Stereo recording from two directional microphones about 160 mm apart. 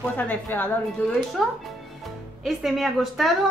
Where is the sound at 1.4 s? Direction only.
Centre (ahead or behind).